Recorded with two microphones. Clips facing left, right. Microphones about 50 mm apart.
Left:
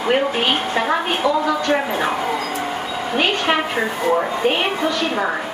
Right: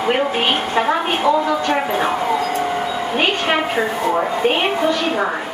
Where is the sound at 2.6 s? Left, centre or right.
Centre.